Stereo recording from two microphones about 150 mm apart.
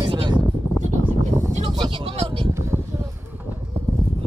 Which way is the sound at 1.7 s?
30° right (ahead or behind).